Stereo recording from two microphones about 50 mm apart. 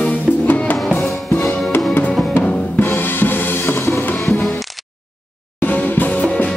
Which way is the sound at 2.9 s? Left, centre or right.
Left.